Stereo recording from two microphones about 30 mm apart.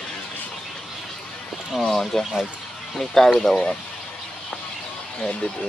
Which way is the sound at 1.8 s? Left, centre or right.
Centre.